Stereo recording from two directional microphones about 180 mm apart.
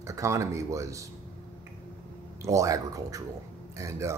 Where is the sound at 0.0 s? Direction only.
15° right (ahead or behind).